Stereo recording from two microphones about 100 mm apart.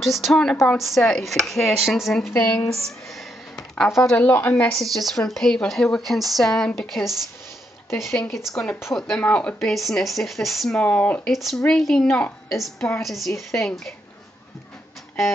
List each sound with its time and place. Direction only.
0.0 s speech: centre (ahead or behind)
3.7 s speech: 5° left (ahead or behind)
4.2 s speech: 20° left (ahead or behind)
4.7 s speech: centre (ahead or behind)
10.8 s speech: 15° left (ahead or behind)
11.3 s speech: centre (ahead or behind)